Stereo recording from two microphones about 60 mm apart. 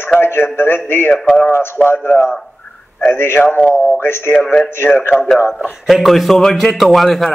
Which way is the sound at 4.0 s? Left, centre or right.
Left.